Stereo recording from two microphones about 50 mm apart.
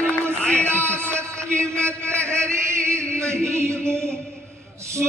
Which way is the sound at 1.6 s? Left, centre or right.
Right.